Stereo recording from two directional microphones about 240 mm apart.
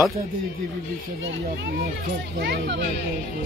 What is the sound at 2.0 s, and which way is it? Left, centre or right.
Speech, right.